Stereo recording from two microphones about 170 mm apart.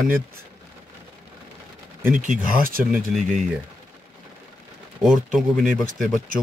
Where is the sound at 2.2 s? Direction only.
50° right (ahead or behind).